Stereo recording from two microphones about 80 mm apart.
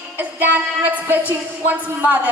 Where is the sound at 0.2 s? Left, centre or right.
Right.